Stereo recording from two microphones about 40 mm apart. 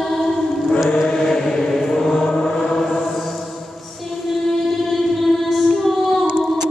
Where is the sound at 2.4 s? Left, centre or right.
Centre.